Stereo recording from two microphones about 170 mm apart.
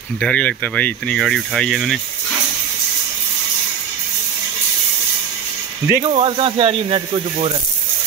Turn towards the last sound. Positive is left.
turn(degrees=-35)  # may be behind; listen again after turning